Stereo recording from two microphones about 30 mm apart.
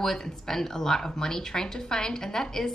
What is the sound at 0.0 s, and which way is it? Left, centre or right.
A woman's voice, centre.